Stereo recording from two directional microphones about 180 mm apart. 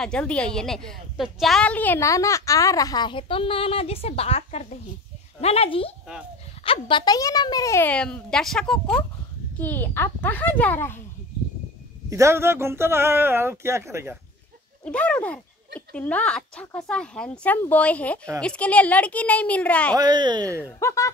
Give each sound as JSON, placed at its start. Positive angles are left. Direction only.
{"t": 0.0, "sound": "a woman's voice", "side_deg": 5}
{"t": 12.1, "sound": "speech", "side_deg": -15}
{"t": 14.9, "sound": "a woman's voice", "side_deg": 5}
{"t": 20.0, "sound": "speech", "side_deg": -25}
{"t": 20.6, "sound": "a woman's voice", "side_deg": 15}